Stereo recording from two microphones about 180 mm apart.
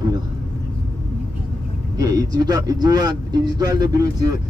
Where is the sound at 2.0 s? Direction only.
20° right (ahead or behind).